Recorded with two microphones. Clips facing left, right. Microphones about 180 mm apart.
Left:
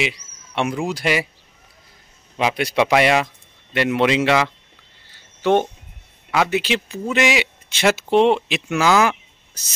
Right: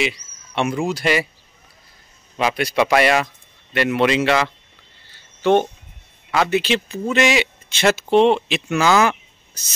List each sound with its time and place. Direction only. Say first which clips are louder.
0.6 s speech: right 1 dB; 15° left (ahead or behind)
2.3 s speech: even; 15° left (ahead or behind)